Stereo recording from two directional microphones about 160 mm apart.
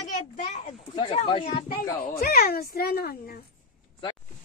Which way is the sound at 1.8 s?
65° left (ahead or behind).